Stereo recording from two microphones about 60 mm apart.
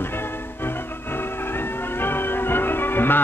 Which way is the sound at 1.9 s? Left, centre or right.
Left.